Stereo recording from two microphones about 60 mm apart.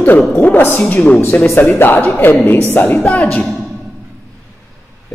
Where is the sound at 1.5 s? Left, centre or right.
Left.